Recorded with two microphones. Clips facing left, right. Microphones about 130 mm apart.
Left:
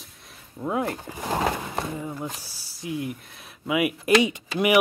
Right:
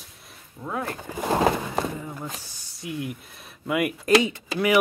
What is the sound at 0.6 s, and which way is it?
Speech, 20° left (ahead or behind).